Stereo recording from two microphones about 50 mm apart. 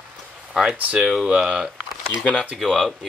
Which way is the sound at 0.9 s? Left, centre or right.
Centre.